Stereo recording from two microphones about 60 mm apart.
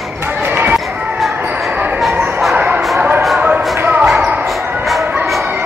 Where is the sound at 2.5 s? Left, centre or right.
Right.